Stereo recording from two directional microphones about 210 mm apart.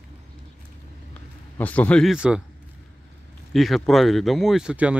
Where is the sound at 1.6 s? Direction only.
5° left (ahead or behind).